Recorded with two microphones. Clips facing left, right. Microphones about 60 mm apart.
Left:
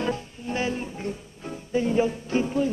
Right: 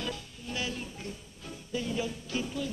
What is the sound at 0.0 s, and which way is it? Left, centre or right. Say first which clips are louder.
Music: left 9 dB; left.